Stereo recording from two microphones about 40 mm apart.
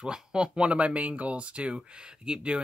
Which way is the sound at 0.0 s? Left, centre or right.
Centre.